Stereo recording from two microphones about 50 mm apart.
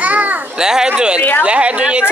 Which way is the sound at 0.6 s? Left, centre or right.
Centre.